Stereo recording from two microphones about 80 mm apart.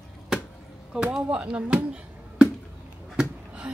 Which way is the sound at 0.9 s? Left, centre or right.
Centre.